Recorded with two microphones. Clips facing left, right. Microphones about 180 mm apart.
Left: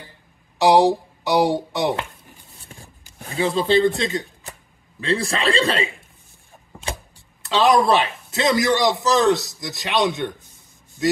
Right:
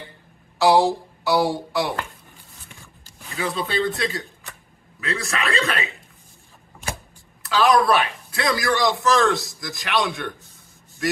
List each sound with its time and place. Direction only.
0.6 s speech: 20° left (ahead or behind)
2.6 s a sound: 35° left (ahead or behind)
3.3 s a man's voice: 25° left (ahead or behind)
7.4 s a man's voice: 20° left (ahead or behind)